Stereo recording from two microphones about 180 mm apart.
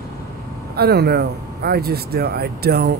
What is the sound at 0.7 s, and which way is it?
Speech, 60° right (ahead or behind).